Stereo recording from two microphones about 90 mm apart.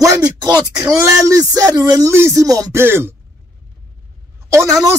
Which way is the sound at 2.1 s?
30° right (ahead or behind).